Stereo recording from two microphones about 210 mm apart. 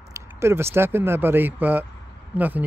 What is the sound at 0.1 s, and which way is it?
Speech, 10° right (ahead or behind).